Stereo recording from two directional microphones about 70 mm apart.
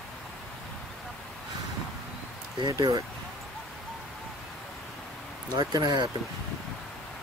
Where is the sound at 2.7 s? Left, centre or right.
Right.